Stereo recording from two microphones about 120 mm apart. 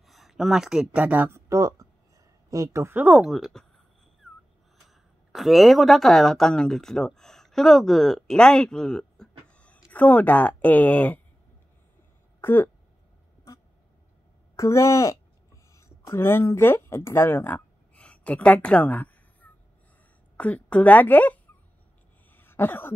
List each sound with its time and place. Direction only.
0.0 s speech: centre (ahead or behind); by 3.0 s 25° right (ahead or behind)
3.0 s speech: 5° right (ahead or behind)
4.8 s speech: centre (ahead or behind)
12.4 s speech: 20° left (ahead or behind)
14.5 s a sound: 25° left (ahead or behind)
20.3 s a woman's voice: 10° left (ahead or behind)
22.3 s throat clearing: 15° left (ahead or behind)